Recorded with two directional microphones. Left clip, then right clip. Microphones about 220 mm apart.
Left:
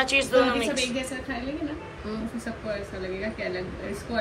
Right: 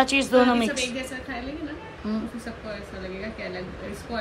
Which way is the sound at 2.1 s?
15° right (ahead or behind).